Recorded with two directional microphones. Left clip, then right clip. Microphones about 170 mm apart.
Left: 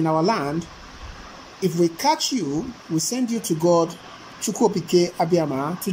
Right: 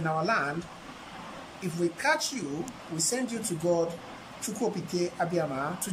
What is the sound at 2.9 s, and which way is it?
A woman's voice, 15° left (ahead or behind).